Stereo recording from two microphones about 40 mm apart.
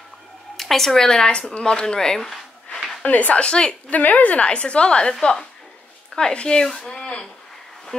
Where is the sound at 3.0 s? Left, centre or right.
Left.